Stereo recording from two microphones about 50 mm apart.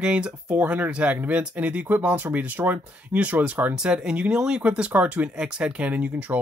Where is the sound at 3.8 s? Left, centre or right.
Centre.